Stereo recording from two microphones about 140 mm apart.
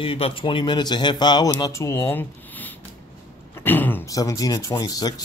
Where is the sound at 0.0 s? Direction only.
40° left (ahead or behind); by 2.7 s 10° left (ahead or behind).